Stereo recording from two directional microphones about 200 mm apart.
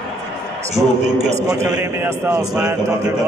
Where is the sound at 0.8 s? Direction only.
10° right (ahead or behind).